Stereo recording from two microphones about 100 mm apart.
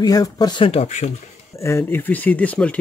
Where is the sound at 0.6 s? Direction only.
90° left.